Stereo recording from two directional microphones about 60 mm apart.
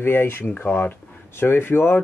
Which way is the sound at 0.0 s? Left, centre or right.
Left.